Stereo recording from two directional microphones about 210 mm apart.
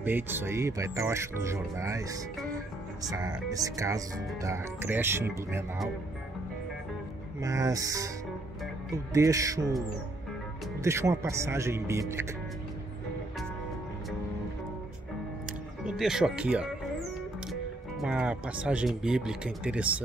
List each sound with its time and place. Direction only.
0.0 s speech: 10° right (ahead or behind)
7.4 s speech: 15° right (ahead or behind)
10.8 s speech: 15° right (ahead or behind)
15.8 s speech: centre (ahead or behind)
18.0 s speech: 5° right (ahead or behind)